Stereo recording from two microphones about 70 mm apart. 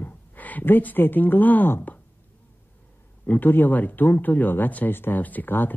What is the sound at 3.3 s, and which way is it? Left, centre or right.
Speech, left.